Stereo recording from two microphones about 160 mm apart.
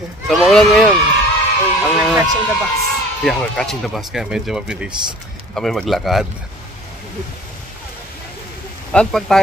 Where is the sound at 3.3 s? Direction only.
5° left (ahead or behind).